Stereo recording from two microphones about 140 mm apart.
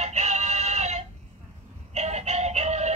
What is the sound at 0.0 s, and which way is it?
Synthetic singing, 55° right (ahead or behind).